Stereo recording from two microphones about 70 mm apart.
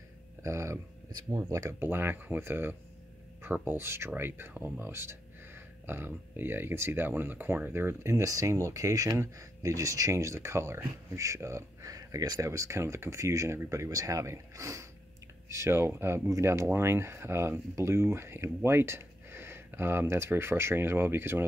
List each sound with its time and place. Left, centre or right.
0.4 s speech: right
1.8 s speech: right
3.7 s speech: right
8.2 s speech: right
12.4 s speech: right
16.3 s speech: right
16.7 s speech: right